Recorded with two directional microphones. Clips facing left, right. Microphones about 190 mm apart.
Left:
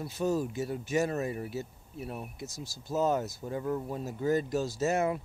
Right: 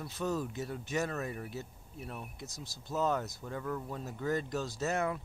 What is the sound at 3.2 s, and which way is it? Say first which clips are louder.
Speech: left 5 dB; 15° left (ahead or behind).